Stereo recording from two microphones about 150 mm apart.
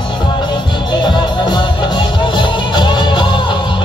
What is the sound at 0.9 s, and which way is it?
Music, 30° left (ahead or behind).